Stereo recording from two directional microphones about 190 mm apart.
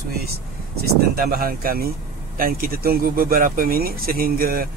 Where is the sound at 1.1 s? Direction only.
50° right (ahead or behind).